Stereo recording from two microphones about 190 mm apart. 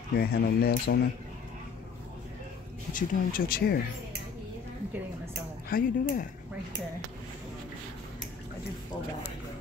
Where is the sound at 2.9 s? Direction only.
45° left (ahead or behind).